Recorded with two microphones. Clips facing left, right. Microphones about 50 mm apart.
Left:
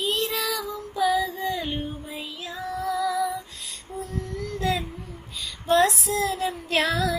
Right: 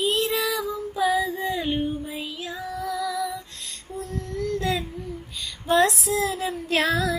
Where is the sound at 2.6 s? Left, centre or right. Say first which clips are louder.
Left 3 dB; centre.